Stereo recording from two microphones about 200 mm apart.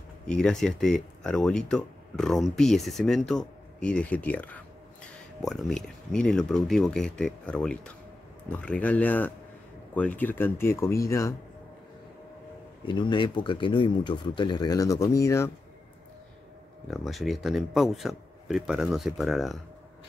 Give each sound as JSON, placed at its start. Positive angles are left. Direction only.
{"t": 0.3, "sound": "speech", "side_deg": 5}
{"t": 12.8, "sound": "speech", "side_deg": 25}
{"t": 16.8, "sound": "speech", "side_deg": 0}